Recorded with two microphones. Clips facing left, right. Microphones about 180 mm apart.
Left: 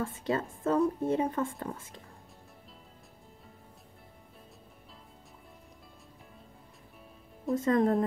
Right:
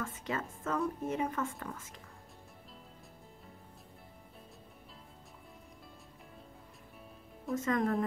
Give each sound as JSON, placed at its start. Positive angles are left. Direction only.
{"t": 0.0, "sound": "a woman's voice", "side_deg": 30}
{"t": 7.5, "sound": "a woman's voice", "side_deg": 30}